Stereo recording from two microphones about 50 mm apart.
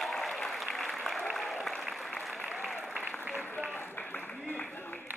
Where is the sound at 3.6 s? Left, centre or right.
Left.